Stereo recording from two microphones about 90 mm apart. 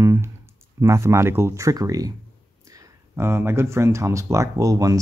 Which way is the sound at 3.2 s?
30° right (ahead or behind).